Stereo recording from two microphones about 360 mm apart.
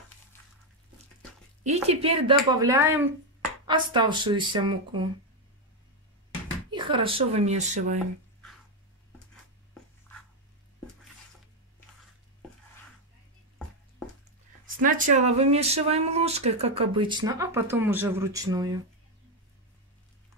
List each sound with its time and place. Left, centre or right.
1.6 s speech: centre
6.7 s speech: centre
14.8 s speech: right